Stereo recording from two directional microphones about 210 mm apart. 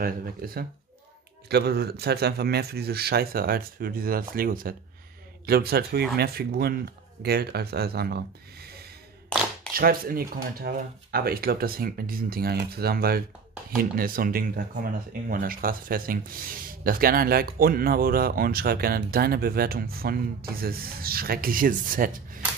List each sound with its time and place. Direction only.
0.0 s speech: 45° right (ahead or behind)
9.8 s speech: 45° right (ahead or behind)